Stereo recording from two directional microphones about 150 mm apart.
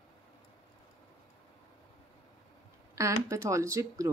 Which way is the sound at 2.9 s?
20° right (ahead or behind).